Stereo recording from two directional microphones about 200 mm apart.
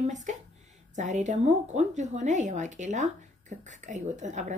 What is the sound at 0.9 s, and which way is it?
A woman's voice, 35° right (ahead or behind).